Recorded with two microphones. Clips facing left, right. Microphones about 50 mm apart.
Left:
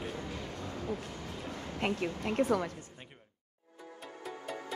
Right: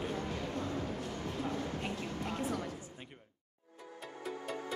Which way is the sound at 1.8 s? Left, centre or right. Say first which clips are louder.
Left 5 dB; left.